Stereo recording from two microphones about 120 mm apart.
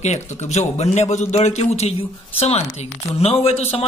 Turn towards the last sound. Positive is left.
turn(degrees=55)  # may be behind; listen again after turning